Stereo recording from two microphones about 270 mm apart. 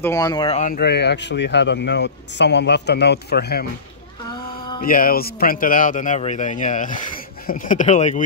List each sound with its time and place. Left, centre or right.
0.0 s speech: centre; by 3.6 s left
4.8 s a man's voice: left